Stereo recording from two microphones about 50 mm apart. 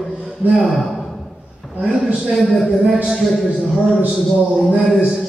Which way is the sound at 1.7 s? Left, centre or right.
Right.